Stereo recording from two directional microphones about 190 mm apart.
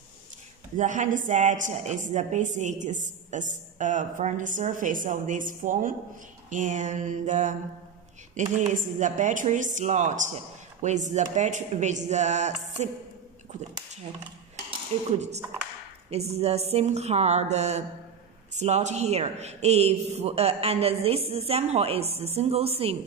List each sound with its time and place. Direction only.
0.7 s a woman's voice: 40° right (ahead or behind)
8.5 s a woman's voice: 40° right (ahead or behind)
15.0 s a woman's voice: 35° right (ahead or behind)